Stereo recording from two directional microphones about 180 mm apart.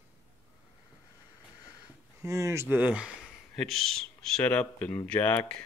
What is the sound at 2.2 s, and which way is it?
Speech, 15° right (ahead or behind).